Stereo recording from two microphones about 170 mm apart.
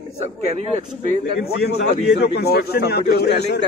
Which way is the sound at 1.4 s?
70° left (ahead or behind).